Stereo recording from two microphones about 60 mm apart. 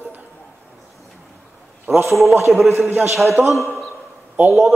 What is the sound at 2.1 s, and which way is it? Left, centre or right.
A man's voice, centre.